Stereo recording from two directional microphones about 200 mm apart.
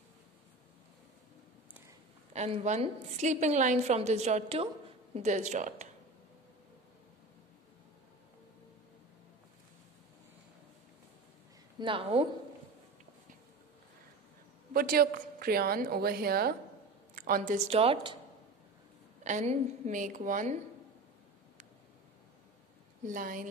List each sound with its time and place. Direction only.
2.3 s a woman's voice: 35° right (ahead or behind)
11.8 s a woman's voice: 25° right (ahead or behind)
14.7 s a woman's voice: 45° right (ahead or behind); by 18.1 s 30° right (ahead or behind)
19.2 s a woman's voice: 35° right (ahead or behind)
23.0 s a woman's voice: 40° right (ahead or behind)